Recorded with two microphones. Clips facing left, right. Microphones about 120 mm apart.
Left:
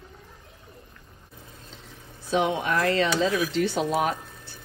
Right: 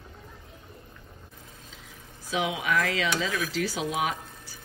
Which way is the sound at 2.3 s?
Centre (ahead or behind).